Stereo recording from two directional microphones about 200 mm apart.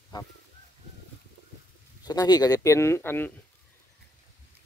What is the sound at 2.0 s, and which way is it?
Speech, 20° left (ahead or behind).